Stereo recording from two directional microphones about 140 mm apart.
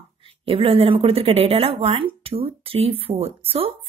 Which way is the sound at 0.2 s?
40° right (ahead or behind).